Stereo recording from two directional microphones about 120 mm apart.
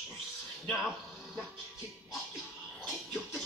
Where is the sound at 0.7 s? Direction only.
Centre (ahead or behind).